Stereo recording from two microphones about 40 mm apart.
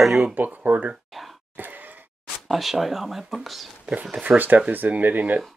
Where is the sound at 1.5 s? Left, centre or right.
Right.